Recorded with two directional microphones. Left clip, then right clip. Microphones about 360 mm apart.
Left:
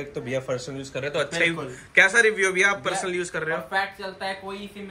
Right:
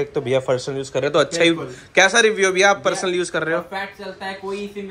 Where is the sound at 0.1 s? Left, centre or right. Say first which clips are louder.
Right 6 dB; centre.